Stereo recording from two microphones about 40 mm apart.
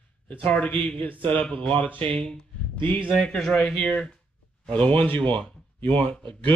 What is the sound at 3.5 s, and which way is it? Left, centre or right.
Speech, left.